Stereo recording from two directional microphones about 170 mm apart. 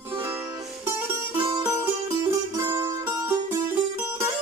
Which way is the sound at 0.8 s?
15° right (ahead or behind).